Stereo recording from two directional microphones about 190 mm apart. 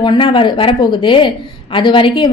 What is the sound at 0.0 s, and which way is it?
A woman's voice, 25° left (ahead or behind).